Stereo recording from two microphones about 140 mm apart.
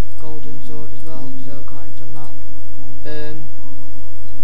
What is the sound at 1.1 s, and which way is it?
Speech, 20° left (ahead or behind).